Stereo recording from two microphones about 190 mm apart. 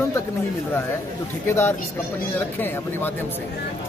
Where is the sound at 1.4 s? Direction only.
10° left (ahead or behind).